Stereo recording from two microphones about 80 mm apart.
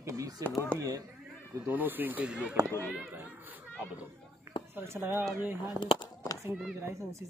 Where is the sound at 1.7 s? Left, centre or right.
Right.